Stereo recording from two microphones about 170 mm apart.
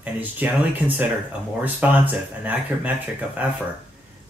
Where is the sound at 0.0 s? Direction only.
10° right (ahead or behind).